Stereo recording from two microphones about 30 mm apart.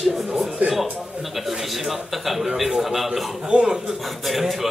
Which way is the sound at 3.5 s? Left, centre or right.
Right.